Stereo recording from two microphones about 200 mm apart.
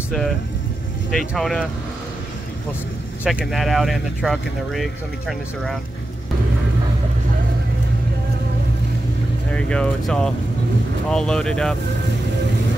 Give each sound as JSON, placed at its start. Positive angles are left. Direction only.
{"t": 1.1, "sound": "speech", "side_deg": 0}
{"t": 3.3, "sound": "speech", "side_deg": 0}
{"t": 9.5, "sound": "speech", "side_deg": 5}